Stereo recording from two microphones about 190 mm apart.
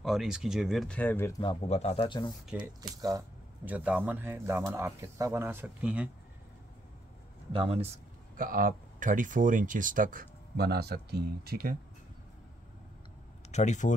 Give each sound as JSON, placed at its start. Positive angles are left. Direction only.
{"t": 0.0, "sound": "speech", "side_deg": 0}
{"t": 1.4, "sound": "speech", "side_deg": 30}
{"t": 2.4, "sound": "speech", "side_deg": -5}
{"t": 3.0, "sound": "speech", "side_deg": -15}
{"t": 7.5, "sound": "speech", "side_deg": -30}
{"t": 8.4, "sound": "speech", "side_deg": -50}
{"t": 13.5, "sound": "speech", "side_deg": 40}